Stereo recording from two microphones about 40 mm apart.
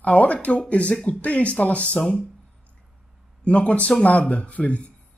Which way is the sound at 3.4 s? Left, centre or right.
Left.